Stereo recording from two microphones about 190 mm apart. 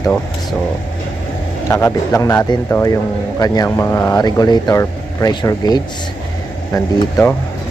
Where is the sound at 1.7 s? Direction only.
15° left (ahead or behind).